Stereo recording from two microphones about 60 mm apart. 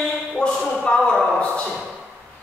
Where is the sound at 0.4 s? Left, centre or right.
Centre.